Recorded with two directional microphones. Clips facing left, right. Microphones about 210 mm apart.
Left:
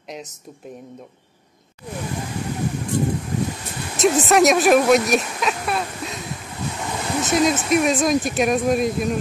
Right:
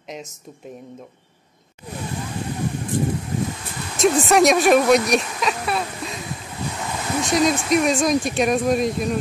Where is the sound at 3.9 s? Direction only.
Centre (ahead or behind).